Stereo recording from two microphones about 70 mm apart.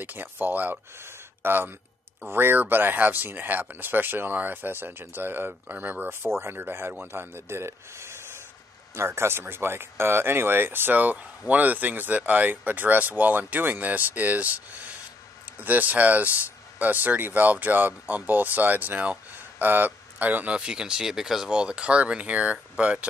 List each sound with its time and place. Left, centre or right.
0.0 s speech: right
15.6 s speech: right